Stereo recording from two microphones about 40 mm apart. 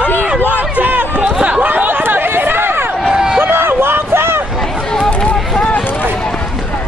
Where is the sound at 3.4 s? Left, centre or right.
Right.